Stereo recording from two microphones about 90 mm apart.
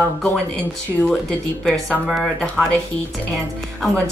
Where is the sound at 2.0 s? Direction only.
Centre (ahead or behind).